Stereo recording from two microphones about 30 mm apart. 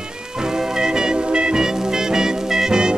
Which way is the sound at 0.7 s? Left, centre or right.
Right.